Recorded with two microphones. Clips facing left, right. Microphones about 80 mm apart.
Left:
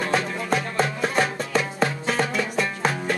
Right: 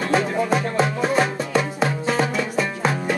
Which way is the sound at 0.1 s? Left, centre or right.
Centre.